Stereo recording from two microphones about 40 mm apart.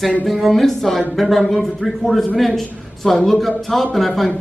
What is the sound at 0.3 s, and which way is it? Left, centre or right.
Speech, centre.